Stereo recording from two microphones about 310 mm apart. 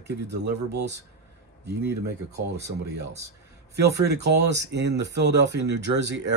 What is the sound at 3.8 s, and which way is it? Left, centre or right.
Speech, right.